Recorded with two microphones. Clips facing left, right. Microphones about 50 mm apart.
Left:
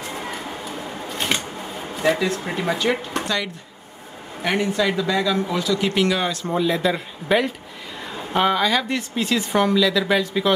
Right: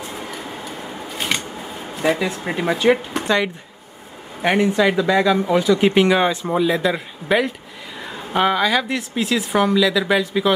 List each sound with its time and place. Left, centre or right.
1.0 s a sound: centre
2.1 s speech: centre
4.4 s a woman's voice: centre